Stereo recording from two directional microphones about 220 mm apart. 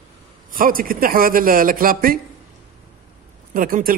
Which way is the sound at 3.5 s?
40° right (ahead or behind).